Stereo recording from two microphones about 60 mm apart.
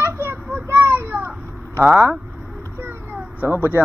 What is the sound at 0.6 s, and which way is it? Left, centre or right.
Children playing, right.